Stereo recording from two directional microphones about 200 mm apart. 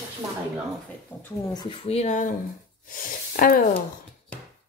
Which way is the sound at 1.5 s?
25° left (ahead or behind).